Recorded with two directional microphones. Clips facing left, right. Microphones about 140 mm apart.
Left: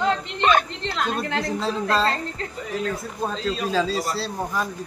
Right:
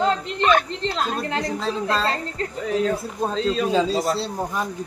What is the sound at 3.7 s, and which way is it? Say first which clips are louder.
Speech: right 3 dB; 20° right (ahead or behind).